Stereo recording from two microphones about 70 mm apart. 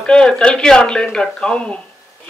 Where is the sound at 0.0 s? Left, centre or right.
Centre.